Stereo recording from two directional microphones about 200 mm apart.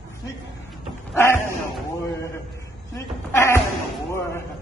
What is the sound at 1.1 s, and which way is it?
Speech, 10° left (ahead or behind).